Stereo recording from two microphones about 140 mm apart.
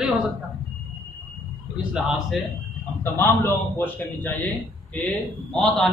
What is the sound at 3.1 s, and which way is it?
A man's voice, 15° left (ahead or behind).